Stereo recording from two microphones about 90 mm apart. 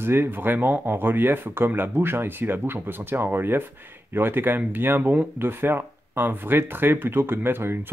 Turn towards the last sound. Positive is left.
turn(degrees=-25)  # may be behind; listen again after turning